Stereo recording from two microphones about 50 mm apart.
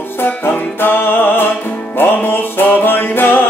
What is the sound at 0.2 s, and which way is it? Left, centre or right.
Music, left.